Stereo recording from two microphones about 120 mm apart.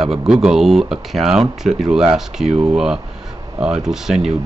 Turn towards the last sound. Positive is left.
turn(degrees=-5)  # may be behind; listen again after turning